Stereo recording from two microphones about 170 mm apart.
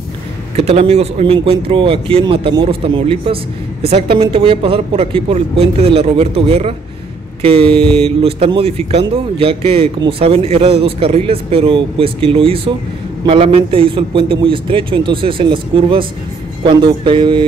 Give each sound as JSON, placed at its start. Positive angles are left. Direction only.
{"t": 0.6, "sound": "a man's voice", "side_deg": -35}